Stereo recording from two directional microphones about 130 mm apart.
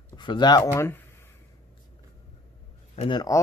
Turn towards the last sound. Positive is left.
turn(degrees=40)  # may be behind; listen again after turning